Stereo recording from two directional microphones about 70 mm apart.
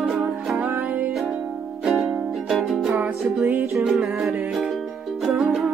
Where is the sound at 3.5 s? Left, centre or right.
Right.